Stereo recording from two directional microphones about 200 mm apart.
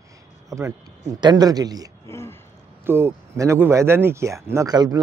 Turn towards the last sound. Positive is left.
turn(degrees=-20)  # may be behind; listen again after turning